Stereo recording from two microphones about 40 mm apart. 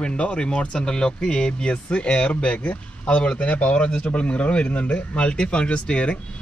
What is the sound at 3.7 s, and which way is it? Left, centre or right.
Speech, left.